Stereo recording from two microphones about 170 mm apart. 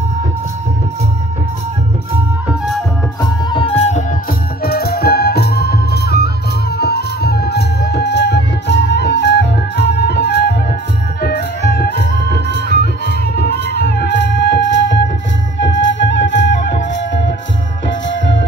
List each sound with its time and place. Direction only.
3.2 s music: 30° left (ahead or behind)
4.6 s music: 65° left (ahead or behind); by 15.0 s 90° left
15.6 s flute: 90° left